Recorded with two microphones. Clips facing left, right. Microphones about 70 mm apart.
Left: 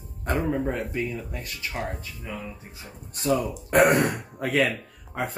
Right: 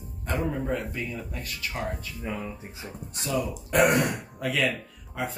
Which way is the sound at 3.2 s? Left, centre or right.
Left.